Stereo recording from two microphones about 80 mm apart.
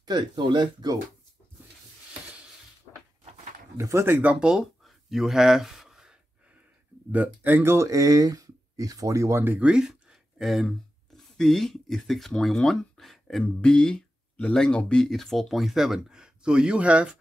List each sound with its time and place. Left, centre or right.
0.0 s speech: right
3.7 s speech: right
4.2 s speech: centre
7.1 s speech: right
9.6 s speech: centre